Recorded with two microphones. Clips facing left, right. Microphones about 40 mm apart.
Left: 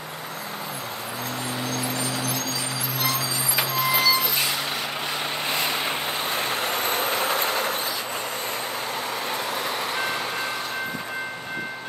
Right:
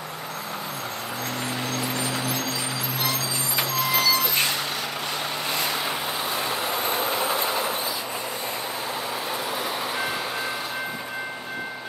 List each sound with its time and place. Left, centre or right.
2.0 s vehicle: centre
3.0 s vehicle: centre
5.5 s vehicle: left
6.3 s vehicle: left